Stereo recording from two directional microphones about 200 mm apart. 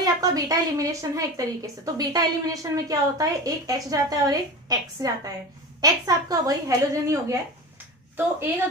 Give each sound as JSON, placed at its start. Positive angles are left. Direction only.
{"t": 0.0, "sound": "a woman's voice", "side_deg": -20}